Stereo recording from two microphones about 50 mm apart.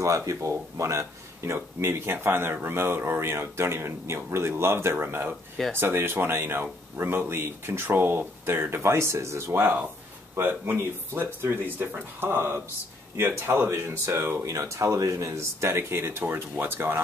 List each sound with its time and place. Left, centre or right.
0.0 s speech: right
0.9 s speech: right
2.1 s speech: right
4.9 s speech: right
9.5 s speech: right